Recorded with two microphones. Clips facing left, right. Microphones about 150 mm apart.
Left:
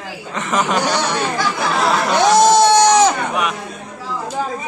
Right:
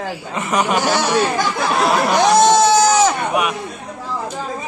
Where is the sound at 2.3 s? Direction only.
5° right (ahead or behind).